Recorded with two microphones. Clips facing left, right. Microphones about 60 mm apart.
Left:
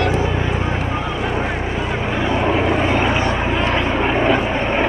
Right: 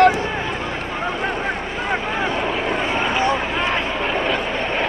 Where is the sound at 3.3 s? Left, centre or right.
Centre.